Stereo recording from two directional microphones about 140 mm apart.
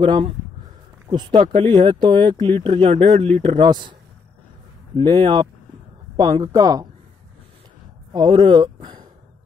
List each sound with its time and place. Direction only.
0.0 s speech: 35° right (ahead or behind)
4.9 s speech: 35° right (ahead or behind)
8.1 s speech: 30° right (ahead or behind)